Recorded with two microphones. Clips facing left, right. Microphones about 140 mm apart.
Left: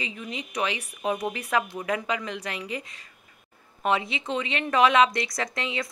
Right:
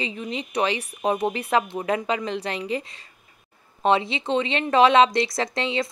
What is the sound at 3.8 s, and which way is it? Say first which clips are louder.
Speech: right 5 dB; 30° right (ahead or behind).